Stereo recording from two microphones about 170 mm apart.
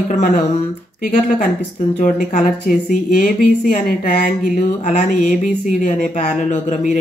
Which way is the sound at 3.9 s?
50° left (ahead or behind).